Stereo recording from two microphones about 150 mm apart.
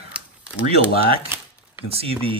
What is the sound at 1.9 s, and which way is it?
Speech, 40° right (ahead or behind).